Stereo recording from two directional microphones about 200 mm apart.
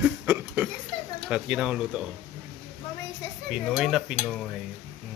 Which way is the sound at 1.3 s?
5° right (ahead or behind).